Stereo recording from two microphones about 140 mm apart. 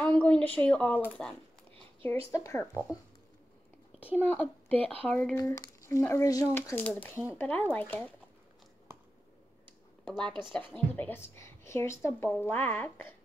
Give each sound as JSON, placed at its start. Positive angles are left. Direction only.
{"t": 0.0, "sound": "speech", "side_deg": 10}
{"t": 2.3, "sound": "speech", "side_deg": 20}
{"t": 4.2, "sound": "speech", "side_deg": 10}
{"t": 5.3, "sound": "speech", "side_deg": 20}
{"t": 10.0, "sound": "speech", "side_deg": 5}